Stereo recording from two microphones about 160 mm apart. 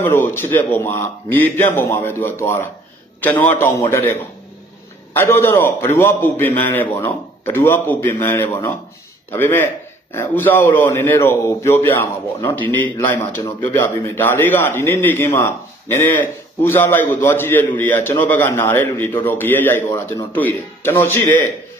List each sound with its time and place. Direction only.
0.0 s a man's voice: 15° left (ahead or behind)